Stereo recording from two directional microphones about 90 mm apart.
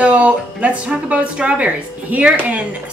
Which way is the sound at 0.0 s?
15° right (ahead or behind).